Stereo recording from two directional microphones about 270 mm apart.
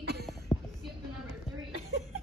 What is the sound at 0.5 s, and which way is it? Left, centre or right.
Music, centre.